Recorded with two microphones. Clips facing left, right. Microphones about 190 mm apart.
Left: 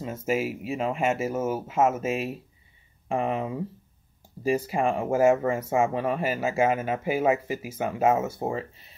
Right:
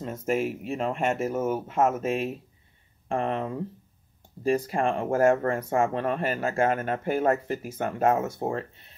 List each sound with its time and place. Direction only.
0.0 s speech: 5° left (ahead or behind)